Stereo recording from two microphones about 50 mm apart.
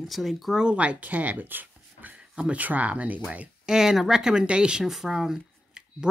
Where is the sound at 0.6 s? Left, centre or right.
Right.